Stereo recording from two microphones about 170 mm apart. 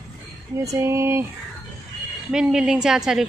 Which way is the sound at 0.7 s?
15° right (ahead or behind).